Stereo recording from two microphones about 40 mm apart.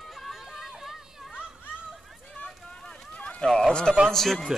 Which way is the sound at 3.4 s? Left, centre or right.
Left.